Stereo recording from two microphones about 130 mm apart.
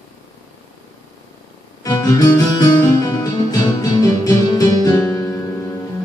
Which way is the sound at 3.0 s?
25° left (ahead or behind).